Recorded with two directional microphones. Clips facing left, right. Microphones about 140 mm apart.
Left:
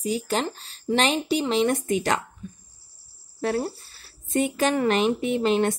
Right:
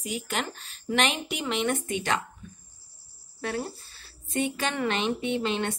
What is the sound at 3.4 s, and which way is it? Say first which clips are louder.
A woman's voice: left 6 dB; 35° left (ahead or behind).